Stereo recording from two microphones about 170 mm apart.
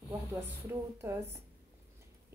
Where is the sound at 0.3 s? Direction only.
15° right (ahead or behind).